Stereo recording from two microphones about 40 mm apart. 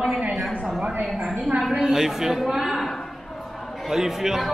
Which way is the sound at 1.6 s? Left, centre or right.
Centre.